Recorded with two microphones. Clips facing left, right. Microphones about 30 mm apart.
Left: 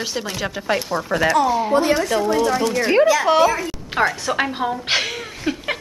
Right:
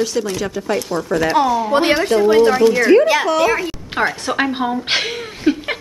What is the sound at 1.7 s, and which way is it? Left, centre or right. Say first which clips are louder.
Speech: right 3 dB; right.